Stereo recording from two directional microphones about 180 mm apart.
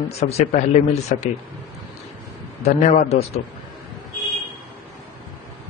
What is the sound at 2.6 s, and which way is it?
Speech, 35° left (ahead or behind).